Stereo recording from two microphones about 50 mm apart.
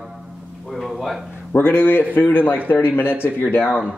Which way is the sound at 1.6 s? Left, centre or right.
Left.